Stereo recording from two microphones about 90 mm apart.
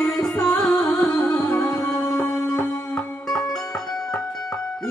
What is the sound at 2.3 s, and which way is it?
Music, 30° left (ahead or behind).